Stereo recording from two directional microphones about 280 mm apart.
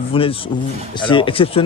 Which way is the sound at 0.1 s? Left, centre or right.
Centre.